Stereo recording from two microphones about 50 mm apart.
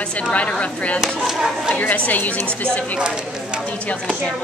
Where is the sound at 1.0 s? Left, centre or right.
Centre.